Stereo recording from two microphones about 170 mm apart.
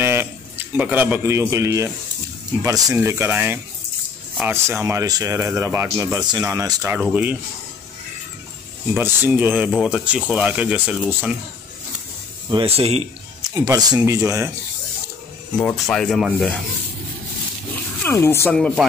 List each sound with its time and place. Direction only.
0.0 s a sound: 15° right (ahead or behind)
0.7 s speech: 10° right (ahead or behind)
8.9 s speech: 10° right (ahead or behind)
12.4 s speech: 30° right (ahead or behind)
13.6 s speech: 20° right (ahead or behind)
15.6 s speech: 5° left (ahead or behind)
18.0 s speech: 15° left (ahead or behind)